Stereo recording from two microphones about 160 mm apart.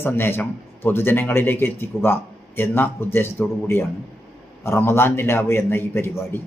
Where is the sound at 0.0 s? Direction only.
15° left (ahead or behind).